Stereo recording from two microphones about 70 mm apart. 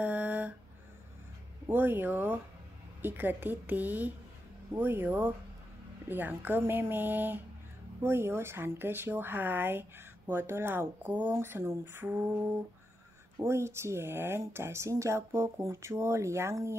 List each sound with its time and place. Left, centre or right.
0.0 s a sound: right
1.7 s speech: right
11.3 s speech: right
13.4 s speech: right